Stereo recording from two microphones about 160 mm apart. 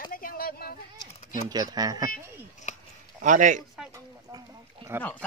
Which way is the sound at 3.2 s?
50° right (ahead or behind).